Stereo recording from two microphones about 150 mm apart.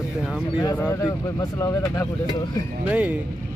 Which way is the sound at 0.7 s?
20° left (ahead or behind).